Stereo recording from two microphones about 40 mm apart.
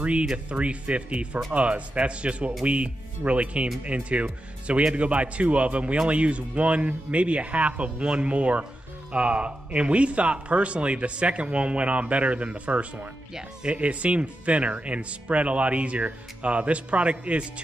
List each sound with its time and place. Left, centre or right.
0.0 s speech: right